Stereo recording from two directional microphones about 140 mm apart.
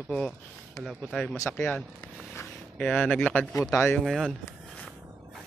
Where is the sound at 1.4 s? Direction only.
15° left (ahead or behind).